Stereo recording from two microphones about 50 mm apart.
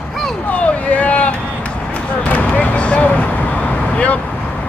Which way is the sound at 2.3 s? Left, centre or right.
Left.